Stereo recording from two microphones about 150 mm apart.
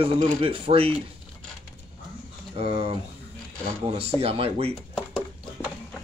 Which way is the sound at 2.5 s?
40° right (ahead or behind).